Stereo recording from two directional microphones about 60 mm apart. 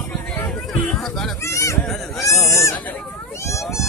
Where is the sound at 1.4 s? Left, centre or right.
Left.